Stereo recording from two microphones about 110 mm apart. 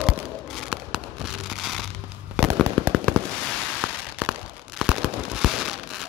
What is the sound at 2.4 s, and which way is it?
Fireworks, 10° left (ahead or behind).